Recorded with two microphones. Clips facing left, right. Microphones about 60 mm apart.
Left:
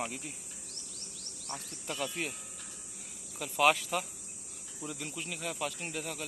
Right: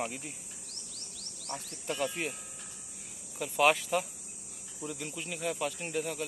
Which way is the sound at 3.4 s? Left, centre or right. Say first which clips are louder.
Right 1 dB; centre.